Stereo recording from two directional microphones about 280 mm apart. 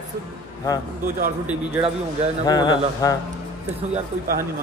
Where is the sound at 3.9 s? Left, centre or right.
Right.